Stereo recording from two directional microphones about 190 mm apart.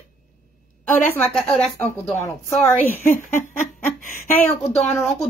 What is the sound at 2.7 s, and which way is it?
A woman's voice, 10° left (ahead or behind).